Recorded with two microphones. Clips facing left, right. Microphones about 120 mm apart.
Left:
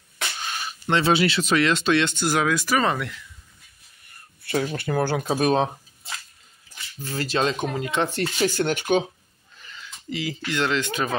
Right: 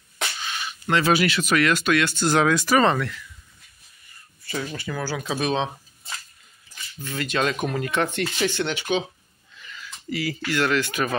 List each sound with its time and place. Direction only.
0.4 s speech: 40° left (ahead or behind)
2.1 s speech: 10° left (ahead or behind)
4.4 s a sound: 60° left (ahead or behind)
4.7 s speech: 55° left (ahead or behind)
7.1 s speech: 35° left (ahead or behind)
7.7 s speech: 20° left (ahead or behind)
8.1 s speech: 40° left (ahead or behind)
9.6 s speech: 30° left (ahead or behind)